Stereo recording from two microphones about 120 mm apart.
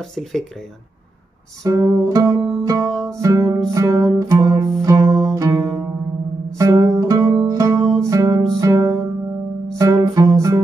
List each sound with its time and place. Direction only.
0.1 s speech: 5° left (ahead or behind)
1.6 s music: 30° right (ahead or behind)
7.2 s music: 40° right (ahead or behind)
7.5 s music: 25° right (ahead or behind)
7.8 s music: 5° left (ahead or behind)
8.1 s music: 30° right (ahead or behind)